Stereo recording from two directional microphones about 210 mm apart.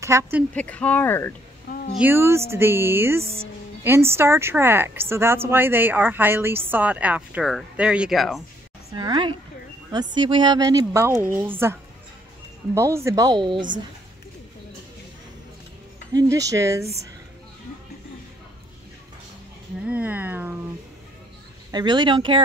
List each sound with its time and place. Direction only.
0.0 s a woman's voice: 15° right (ahead or behind)
0.6 s speech: 5° left (ahead or behind)
1.7 s a sound: 45° left (ahead or behind)
2.0 s a woman's voice: 10° right (ahead or behind)
8.9 s a woman's voice: 20° right (ahead or behind)
16.1 s a woman's voice: 15° right (ahead or behind)
19.9 s a woman's voice: 10° right (ahead or behind)
21.7 s speech: 20° right (ahead or behind)